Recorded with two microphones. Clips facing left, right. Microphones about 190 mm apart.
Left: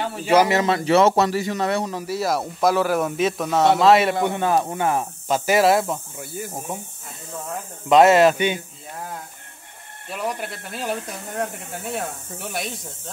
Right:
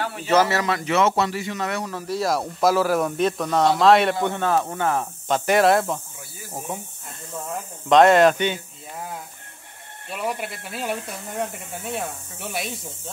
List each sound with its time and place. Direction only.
0.3 s speech: 15° left (ahead or behind); by 1.9 s 30° left (ahead or behind)
2.0 s speech: centre (ahead or behind)
4.3 s speech: 15° left (ahead or behind)
5.5 s speech: 5° left (ahead or behind)
10.0 s speech: centre (ahead or behind)